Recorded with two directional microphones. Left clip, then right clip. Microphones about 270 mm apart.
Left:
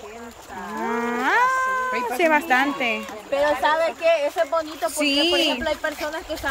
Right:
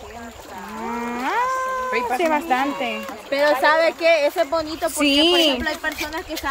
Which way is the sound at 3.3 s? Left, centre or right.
Right.